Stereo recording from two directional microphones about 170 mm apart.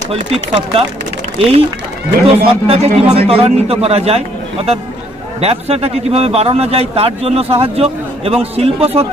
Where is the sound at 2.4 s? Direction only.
35° right (ahead or behind).